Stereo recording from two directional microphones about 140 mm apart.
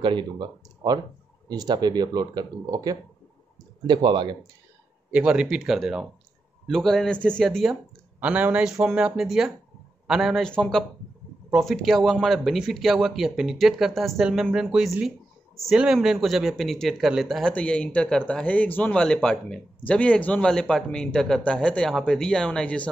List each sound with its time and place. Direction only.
0.0 s speech: 35° right (ahead or behind)
5.1 s speech: 5° right (ahead or behind)
8.2 s speech: 10° right (ahead or behind); by 22.8 s 5° left (ahead or behind)